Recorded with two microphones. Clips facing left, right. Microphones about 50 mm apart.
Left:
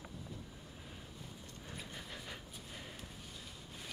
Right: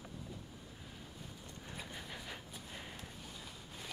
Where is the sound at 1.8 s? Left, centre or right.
Centre.